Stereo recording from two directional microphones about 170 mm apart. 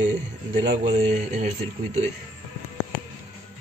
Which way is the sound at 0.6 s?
40° right (ahead or behind).